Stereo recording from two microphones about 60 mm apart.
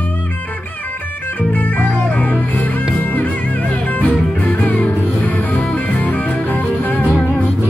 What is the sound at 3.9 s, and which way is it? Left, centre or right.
Music, left.